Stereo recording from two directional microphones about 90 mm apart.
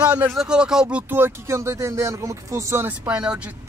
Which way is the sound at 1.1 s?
25° right (ahead or behind).